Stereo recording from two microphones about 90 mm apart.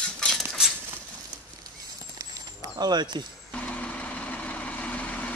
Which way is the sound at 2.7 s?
50° right (ahead or behind).